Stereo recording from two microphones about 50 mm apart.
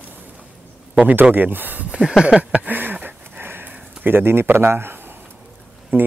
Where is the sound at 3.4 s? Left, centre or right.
Right.